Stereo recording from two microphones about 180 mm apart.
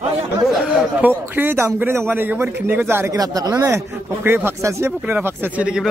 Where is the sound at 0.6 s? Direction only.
5° right (ahead or behind).